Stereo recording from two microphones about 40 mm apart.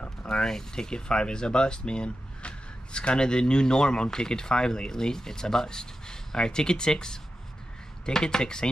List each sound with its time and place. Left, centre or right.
0.3 s speech: centre